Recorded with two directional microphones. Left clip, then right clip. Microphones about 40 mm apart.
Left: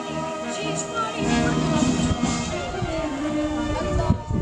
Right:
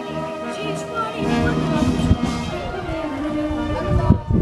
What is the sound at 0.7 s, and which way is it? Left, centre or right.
Music, centre.